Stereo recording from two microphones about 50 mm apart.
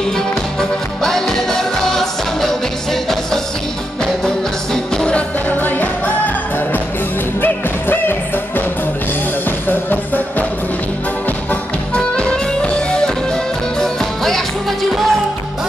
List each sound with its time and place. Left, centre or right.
0.6 s music: centre
4.9 s music: left
5.5 s music: left
9.7 s music: left
11.9 s music: left
13.7 s music: centre